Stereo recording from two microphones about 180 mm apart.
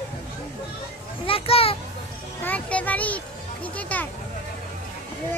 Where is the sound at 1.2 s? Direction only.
30° left (ahead or behind).